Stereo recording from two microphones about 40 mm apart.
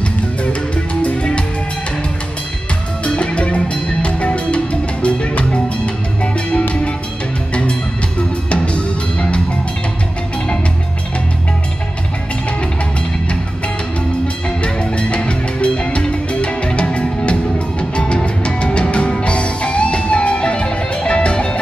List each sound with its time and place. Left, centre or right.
1.0 s music: left
3.2 s music: left
8.5 s music: left
14.2 s music: left